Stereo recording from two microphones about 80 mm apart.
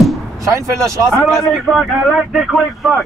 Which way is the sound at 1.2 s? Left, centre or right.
Centre.